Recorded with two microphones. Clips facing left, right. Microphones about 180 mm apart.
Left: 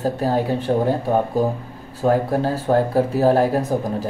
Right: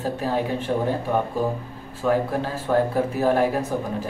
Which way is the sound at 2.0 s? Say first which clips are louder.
Left 4 dB; 40° left (ahead or behind).